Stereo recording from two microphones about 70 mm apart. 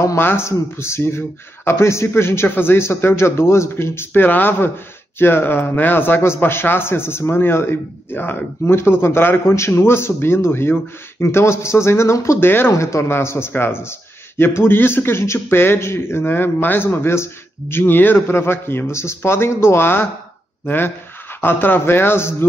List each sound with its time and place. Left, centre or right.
0.2 s a man's voice: left
12.7 s a man's voice: left